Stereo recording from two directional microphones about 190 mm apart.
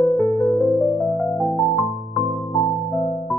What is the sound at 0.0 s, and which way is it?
Music, 5° left (ahead or behind).